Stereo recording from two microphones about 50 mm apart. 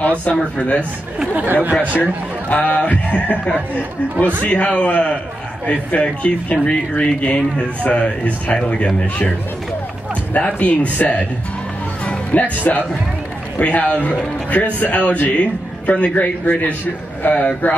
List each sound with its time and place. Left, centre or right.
0.2 s speech: left
1.3 s speech: right
2.5 s speech: left
4.4 s speech: left
10.3 s speech: left